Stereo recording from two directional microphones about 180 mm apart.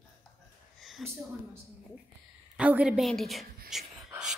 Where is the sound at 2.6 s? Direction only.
5° right (ahead or behind).